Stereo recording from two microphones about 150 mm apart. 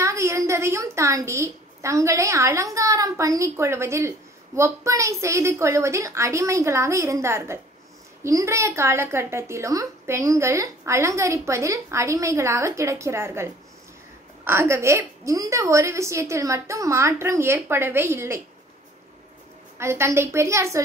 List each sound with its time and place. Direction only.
0.0 s a woman's voice: 20° right (ahead or behind)
19.8 s a woman's voice: 15° right (ahead or behind)